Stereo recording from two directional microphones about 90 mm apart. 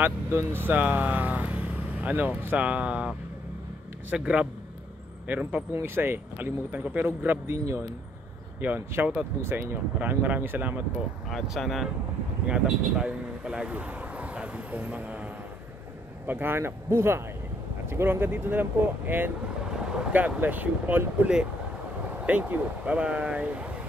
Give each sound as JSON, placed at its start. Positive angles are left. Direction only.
{"t": 0.0, "sound": "speech", "side_deg": -25}
{"t": 11.2, "sound": "speech", "side_deg": 0}
{"t": 16.3, "sound": "speech", "side_deg": -25}